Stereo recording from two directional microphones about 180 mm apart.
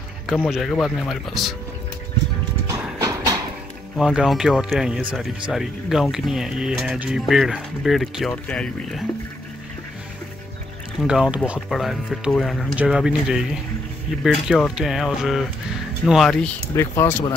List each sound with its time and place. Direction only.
0.3 s speech: centre (ahead or behind)
2.7 s horse: 20° right (ahead or behind)
3.9 s speech: 5° right (ahead or behind)
11.0 s speech: 5° right (ahead or behind)
16.7 s speech: 15° left (ahead or behind)